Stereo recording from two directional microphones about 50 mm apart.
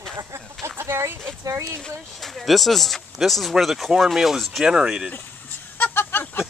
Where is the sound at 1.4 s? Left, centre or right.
Right.